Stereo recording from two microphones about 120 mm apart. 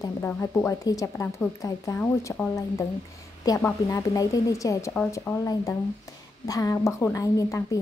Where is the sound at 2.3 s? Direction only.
15° left (ahead or behind).